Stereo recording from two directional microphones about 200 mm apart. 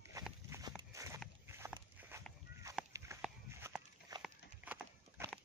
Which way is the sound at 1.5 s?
10° right (ahead or behind).